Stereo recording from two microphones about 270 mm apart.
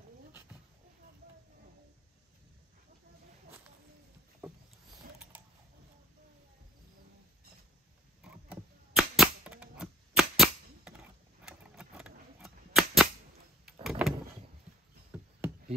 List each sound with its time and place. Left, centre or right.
5.3 s typing: centre
8.2 s typewriter: centre
11.4 s a sound: centre
13.8 s vehicle: centre
15.1 s knock: centre